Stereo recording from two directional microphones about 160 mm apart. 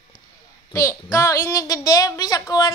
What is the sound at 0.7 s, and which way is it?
A woman's voice, 20° left (ahead or behind).